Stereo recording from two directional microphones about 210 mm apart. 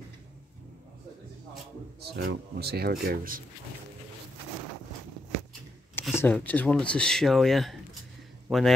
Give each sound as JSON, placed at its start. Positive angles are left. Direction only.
{"t": 2.0, "sound": "speech", "side_deg": -50}
{"t": 6.1, "sound": "speech", "side_deg": 10}